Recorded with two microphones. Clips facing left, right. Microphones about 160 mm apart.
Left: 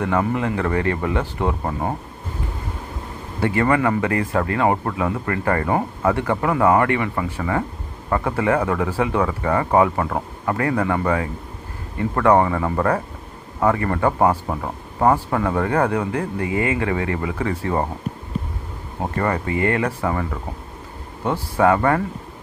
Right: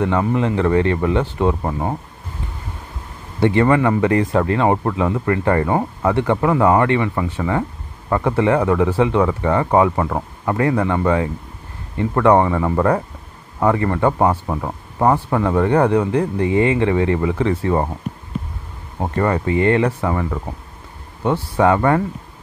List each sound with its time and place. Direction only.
0.0 s speech: 20° right (ahead or behind)
3.3 s speech: 25° right (ahead or behind)
18.9 s speech: 20° right (ahead or behind)
20.1 s speech: 15° right (ahead or behind)